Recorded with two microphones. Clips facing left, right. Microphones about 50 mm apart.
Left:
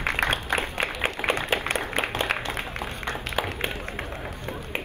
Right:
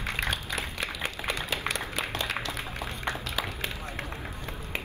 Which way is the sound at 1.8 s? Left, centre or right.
Left.